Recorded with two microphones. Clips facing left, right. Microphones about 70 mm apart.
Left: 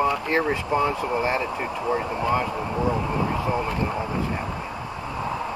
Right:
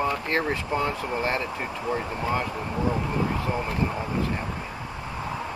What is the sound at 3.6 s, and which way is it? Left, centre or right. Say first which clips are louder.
Speech: left 2 dB; centre.